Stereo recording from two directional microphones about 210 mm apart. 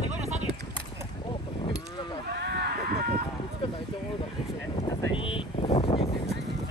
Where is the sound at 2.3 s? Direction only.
50° right (ahead or behind).